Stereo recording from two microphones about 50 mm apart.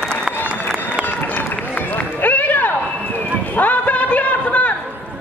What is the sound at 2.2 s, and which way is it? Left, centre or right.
Run, left.